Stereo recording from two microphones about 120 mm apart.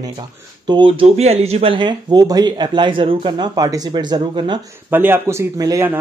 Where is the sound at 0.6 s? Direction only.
45° right (ahead or behind).